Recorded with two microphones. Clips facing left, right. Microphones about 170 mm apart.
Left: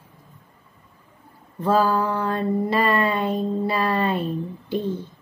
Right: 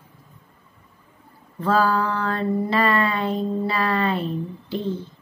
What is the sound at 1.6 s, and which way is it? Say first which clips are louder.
Mantra: left 1 dB; 15° left (ahead or behind).